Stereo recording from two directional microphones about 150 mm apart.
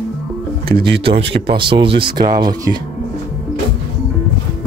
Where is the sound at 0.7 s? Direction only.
70° right (ahead or behind).